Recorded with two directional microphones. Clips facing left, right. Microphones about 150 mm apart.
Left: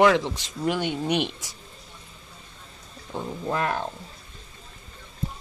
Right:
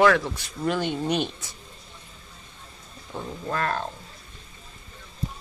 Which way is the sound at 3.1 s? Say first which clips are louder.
Left 2 dB; 15° left (ahead or behind).